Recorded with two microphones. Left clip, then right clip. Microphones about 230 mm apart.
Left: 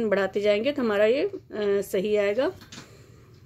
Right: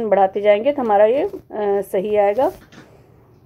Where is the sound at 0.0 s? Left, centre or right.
Centre.